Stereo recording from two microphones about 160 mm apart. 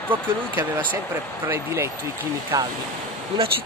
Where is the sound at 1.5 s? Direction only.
15° right (ahead or behind).